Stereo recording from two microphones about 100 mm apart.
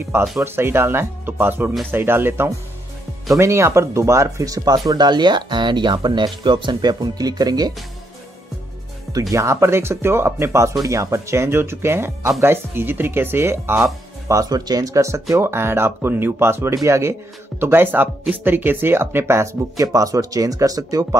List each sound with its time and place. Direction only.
0.4 s speech: 25° right (ahead or behind); by 7.7 s 40° right (ahead or behind)
9.3 s speech: 30° right (ahead or behind)
14.2 s speech: 35° right (ahead or behind)